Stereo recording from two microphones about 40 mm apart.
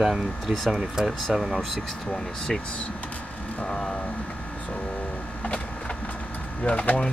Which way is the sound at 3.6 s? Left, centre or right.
Left.